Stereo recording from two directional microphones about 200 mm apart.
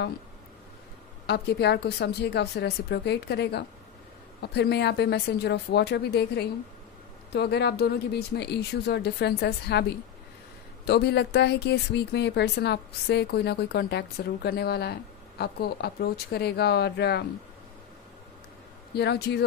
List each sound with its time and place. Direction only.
1.2 s speech: 55° left (ahead or behind)
18.9 s speech: 55° left (ahead or behind)